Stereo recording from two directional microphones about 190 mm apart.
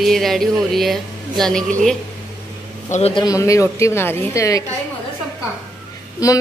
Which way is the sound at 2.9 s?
35° left (ahead or behind).